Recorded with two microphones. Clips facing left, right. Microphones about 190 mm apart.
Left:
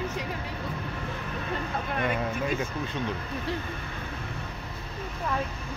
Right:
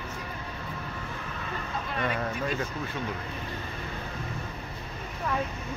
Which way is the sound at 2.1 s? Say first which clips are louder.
Left 2 dB; 10° left (ahead or behind).